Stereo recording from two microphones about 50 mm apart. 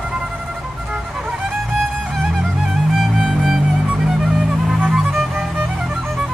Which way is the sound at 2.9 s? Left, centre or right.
Centre.